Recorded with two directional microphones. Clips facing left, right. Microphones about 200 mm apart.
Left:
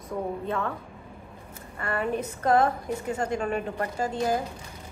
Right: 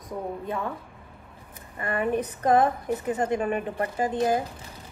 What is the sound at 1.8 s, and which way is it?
A woman's voice, 20° right (ahead or behind).